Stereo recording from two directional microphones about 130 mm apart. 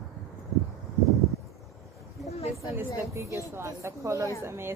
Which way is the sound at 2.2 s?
55° left (ahead or behind).